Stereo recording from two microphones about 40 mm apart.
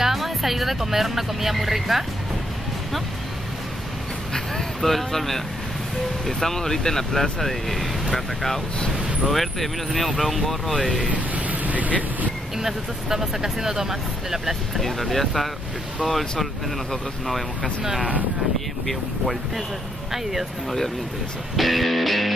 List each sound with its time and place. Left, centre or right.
0.0 s speech: centre
4.3 s speech: centre
11.1 s vehicle: right
12.5 s speech: centre
14.8 s speech: centre
20.1 s speech: centre
21.5 s speech: centre